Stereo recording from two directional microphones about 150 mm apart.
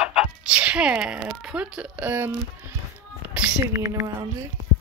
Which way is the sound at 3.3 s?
20° right (ahead or behind).